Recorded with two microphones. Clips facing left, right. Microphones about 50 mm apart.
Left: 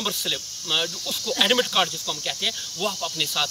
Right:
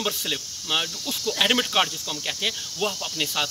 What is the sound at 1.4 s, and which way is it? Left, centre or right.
Speech, centre.